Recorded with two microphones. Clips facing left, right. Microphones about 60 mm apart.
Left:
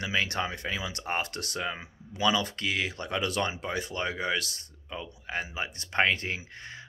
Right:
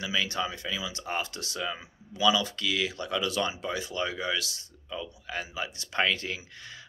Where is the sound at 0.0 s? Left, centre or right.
Left.